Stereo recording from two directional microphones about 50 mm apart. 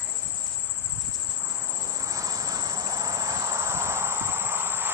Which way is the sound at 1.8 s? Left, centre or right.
Right.